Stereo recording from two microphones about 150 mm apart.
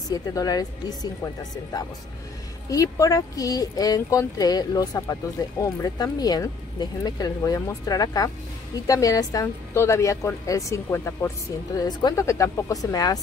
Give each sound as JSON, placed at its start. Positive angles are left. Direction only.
{"t": 0.1, "sound": "a woman's voice", "side_deg": 25}